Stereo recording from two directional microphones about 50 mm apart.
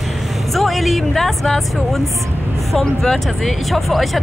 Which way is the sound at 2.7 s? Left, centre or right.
Centre.